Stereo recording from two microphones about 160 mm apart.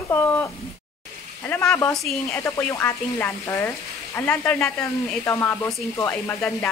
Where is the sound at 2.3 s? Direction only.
20° left (ahead or behind).